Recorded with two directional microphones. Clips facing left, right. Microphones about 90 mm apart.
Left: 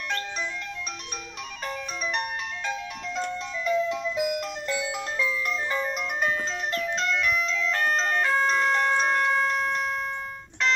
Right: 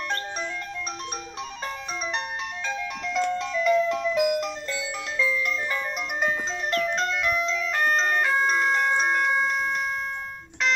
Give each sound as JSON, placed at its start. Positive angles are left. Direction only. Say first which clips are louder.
{"t": 3.1, "sound": "music", "louder": "right 6 dB", "side_deg": -90}
{"t": 5.1, "sound": "music", "louder": "right 4 dB", "side_deg": 25}
{"t": 6.7, "sound": "music", "louder": "right 6 dB", "side_deg": -60}
{"t": 7.2, "sound": "music", "louder": "right 1 dB", "side_deg": -30}
{"t": 7.5, "sound": "music", "louder": "right 1 dB", "side_deg": -10}